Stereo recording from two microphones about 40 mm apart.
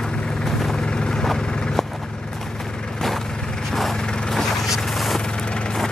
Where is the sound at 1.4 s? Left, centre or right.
Left.